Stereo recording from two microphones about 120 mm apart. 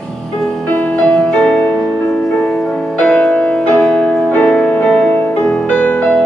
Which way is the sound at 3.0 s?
5° left (ahead or behind).